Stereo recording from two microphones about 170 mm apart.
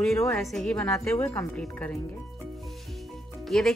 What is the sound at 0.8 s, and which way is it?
Speech, 15° left (ahead or behind).